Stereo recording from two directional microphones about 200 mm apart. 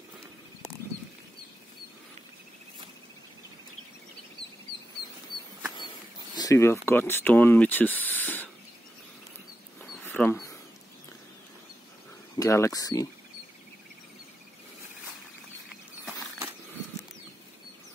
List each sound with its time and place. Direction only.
6.3 s speech: 15° left (ahead or behind)
10.0 s a sound: 10° left (ahead or behind)
12.4 s speech: 15° left (ahead or behind)